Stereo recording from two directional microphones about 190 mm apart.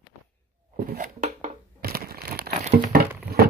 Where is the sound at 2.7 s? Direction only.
50° right (ahead or behind).